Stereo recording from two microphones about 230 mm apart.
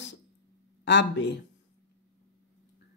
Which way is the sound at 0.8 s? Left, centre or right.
Left.